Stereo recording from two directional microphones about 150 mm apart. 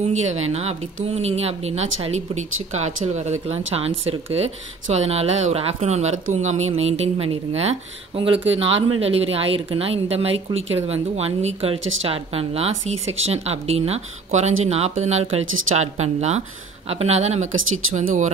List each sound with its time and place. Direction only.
0.0 s speech: 50° right (ahead or behind)